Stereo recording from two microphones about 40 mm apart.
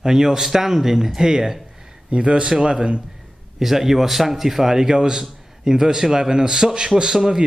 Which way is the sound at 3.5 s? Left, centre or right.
Centre.